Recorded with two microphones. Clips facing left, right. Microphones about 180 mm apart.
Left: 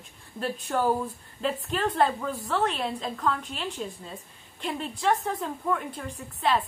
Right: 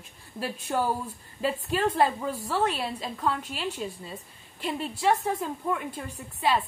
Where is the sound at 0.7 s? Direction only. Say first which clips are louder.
Left 2 dB; 15° right (ahead or behind).